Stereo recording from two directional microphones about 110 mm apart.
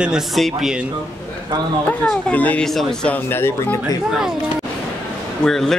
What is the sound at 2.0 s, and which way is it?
Speech, 15° left (ahead or behind).